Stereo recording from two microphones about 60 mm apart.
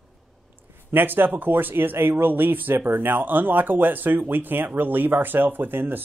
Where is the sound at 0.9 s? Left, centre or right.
Right.